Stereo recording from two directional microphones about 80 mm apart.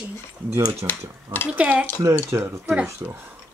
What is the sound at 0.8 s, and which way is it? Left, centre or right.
Stir, right.